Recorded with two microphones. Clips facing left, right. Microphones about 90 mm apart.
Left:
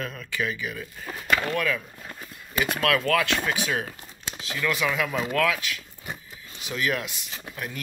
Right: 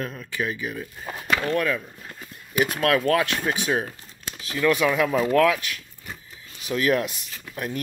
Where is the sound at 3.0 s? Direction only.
30° right (ahead or behind).